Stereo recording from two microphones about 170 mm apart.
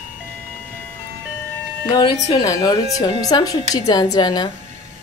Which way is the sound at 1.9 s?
25° left (ahead or behind).